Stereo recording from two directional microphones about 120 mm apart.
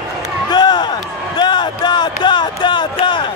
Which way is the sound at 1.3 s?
35° left (ahead or behind).